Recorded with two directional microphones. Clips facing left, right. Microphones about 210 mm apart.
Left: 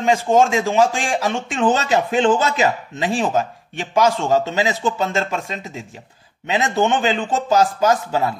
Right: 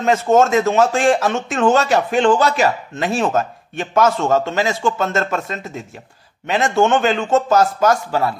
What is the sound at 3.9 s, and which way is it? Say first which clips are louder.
A man's voice: right 1 dB; 15° left (ahead or behind).